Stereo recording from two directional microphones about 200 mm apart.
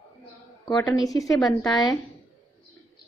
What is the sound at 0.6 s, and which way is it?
A woman's voice, 20° left (ahead or behind).